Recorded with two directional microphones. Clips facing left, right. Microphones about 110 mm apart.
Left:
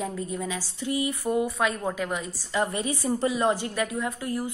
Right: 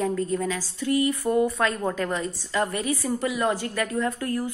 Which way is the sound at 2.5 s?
20° left (ahead or behind).